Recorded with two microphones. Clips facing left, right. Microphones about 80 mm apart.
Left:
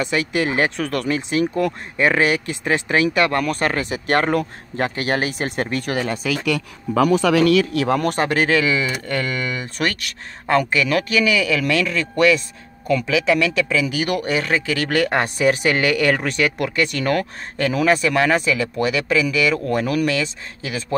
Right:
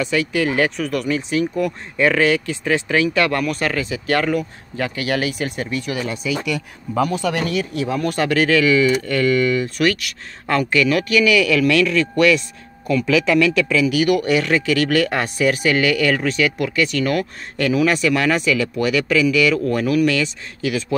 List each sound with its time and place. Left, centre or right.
0.0 s speech: left
6.2 s speech: left
7.0 s speech: left
7.9 s speech: left
8.2 s speech: left
10.9 s speech: left
13.0 s speech: centre
13.9 s speech: left